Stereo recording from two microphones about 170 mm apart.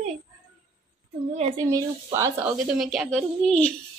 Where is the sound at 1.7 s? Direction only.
20° right (ahead or behind).